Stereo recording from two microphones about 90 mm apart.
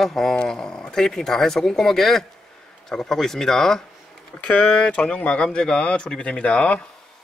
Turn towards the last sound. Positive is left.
turn(degrees=15)  # may be behind; listen again after turning